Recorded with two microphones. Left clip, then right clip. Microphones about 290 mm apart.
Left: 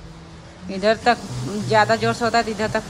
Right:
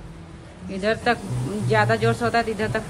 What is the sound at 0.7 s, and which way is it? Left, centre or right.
A man's voice, centre.